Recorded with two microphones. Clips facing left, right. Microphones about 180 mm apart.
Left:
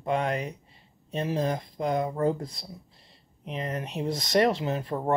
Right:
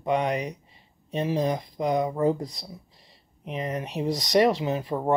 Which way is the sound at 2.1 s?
15° right (ahead or behind).